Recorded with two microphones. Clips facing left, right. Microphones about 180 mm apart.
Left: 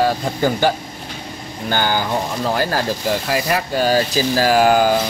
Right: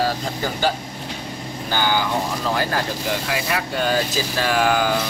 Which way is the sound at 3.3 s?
35° left (ahead or behind).